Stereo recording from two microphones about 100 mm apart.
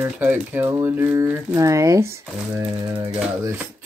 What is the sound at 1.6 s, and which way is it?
Speech, 30° right (ahead or behind).